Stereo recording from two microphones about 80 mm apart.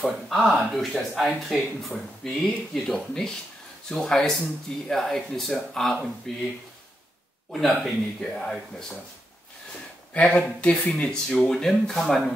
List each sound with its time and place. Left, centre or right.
0.0 s speech: centre
7.8 s speech: centre
10.3 s speech: centre